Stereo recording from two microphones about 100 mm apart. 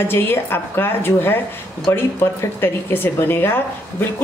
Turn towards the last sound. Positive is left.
turn(degrees=20)  # may be behind; listen again after turning